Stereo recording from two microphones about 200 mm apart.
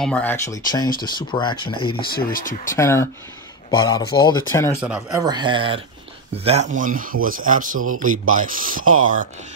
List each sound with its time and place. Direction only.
0.0 s speech: 5° left (ahead or behind)
1.0 s speech: 20° left (ahead or behind)
2.1 s speech: 45° left (ahead or behind)
2.7 s speech: 15° left (ahead or behind)
4.7 s speech: 5° right (ahead or behind)
5.1 s speech: 20° right (ahead or behind); by 7.8 s 40° right (ahead or behind)
7.8 s speech: 90° right
8.1 s speech: 40° right (ahead or behind)